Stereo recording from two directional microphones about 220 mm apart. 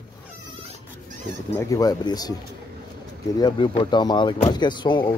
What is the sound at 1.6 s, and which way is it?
Speech, 15° left (ahead or behind).